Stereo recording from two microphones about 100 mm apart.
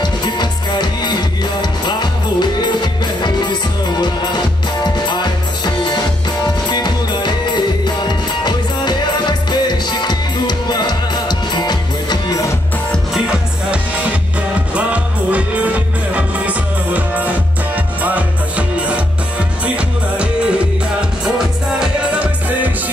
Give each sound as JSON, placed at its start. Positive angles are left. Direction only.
{"t": 0.0, "sound": "music", "side_deg": 50}
{"t": 13.1, "sound": "music", "side_deg": -10}
{"t": 20.2, "sound": "music", "side_deg": -10}
{"t": 21.7, "sound": "music", "side_deg": -10}